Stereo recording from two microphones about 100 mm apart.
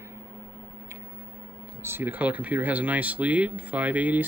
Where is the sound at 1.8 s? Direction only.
20° right (ahead or behind).